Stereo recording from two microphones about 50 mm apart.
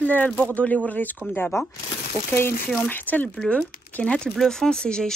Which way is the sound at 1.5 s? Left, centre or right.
Left.